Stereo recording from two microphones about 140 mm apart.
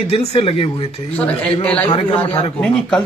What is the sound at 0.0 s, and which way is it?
Speech, 45° left (ahead or behind).